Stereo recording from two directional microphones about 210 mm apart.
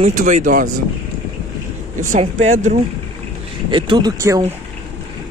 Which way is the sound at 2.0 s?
35° right (ahead or behind).